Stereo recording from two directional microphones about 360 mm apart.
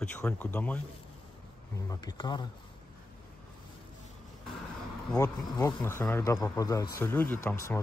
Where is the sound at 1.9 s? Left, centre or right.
Centre.